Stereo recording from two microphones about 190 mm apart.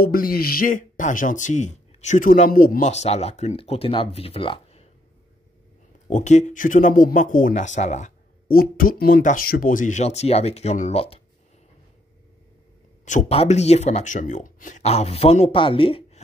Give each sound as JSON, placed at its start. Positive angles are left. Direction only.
{"t": 0.0, "sound": "speech", "side_deg": 50}
{"t": 6.0, "sound": "speech", "side_deg": 40}
{"t": 13.0, "sound": "speech", "side_deg": 40}